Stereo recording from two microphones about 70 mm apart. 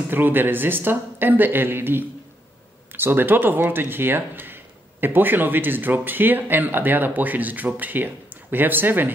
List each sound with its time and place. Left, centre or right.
0.1 s speech: right